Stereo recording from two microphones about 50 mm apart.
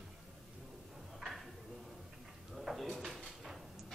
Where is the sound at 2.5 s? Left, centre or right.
Centre.